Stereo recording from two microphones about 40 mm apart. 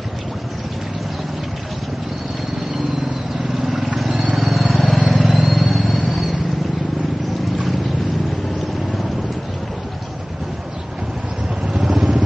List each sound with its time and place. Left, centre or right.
3.6 s vehicle: centre
11.8 s vehicle: right